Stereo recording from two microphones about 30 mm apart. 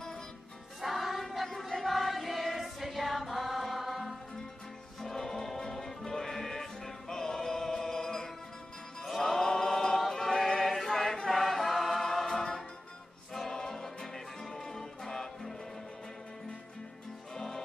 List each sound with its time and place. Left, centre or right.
0.7 s choir: centre
5.0 s music: centre
9.0 s music: centre
9.5 s chant: centre
10.2 s choir: centre
13.6 s music: centre
17.4 s music: centre